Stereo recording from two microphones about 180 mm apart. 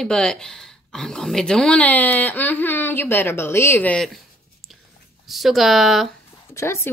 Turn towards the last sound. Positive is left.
turn(degrees=15)  # may be behind; listen again after turning